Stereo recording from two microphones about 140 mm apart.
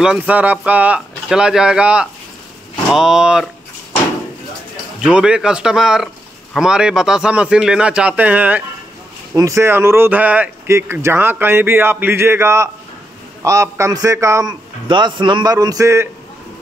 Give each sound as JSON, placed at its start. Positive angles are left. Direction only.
{"t": 0.0, "sound": "a man's voice", "side_deg": -10}
{"t": 5.0, "sound": "a man's voice", "side_deg": -5}
{"t": 9.3, "sound": "a man's voice", "side_deg": -20}